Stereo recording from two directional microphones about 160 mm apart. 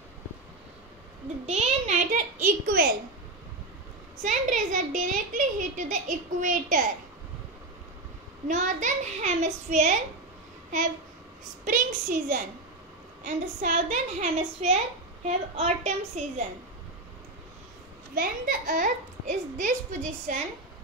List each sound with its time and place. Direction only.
1.4 s a sound: 45° right (ahead or behind); by 2.9 s 65° right (ahead or behind)
4.2 s a woman's voice: 50° right (ahead or behind)
8.5 s a woman's voice: 50° right (ahead or behind)
11.6 s a woman's voice: 55° right (ahead or behind)
18.1 s a woman's voice: 60° right (ahead or behind)